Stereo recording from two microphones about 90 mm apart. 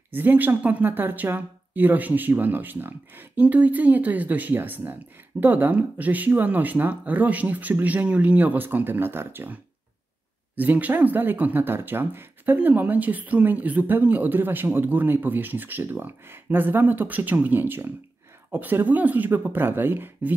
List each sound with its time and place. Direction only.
0.1 s speech: 20° right (ahead or behind)